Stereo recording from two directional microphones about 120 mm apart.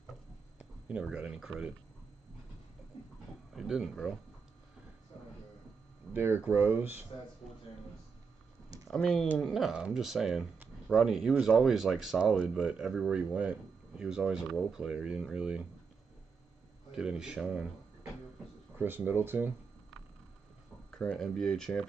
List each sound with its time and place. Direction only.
0.8 s speech: 10° right (ahead or behind)
3.5 s speech: centre (ahead or behind)
6.1 s speech: 15° right (ahead or behind)
8.8 s speech: 5° left (ahead or behind)
16.9 s speech: 5° right (ahead or behind)
18.8 s speech: 15° right (ahead or behind)
20.9 s speech: 10° left (ahead or behind)